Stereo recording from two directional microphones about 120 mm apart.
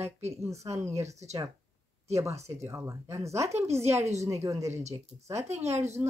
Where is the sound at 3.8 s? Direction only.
65° right (ahead or behind).